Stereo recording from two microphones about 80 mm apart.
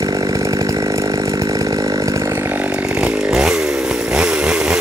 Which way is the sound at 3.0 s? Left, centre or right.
Centre.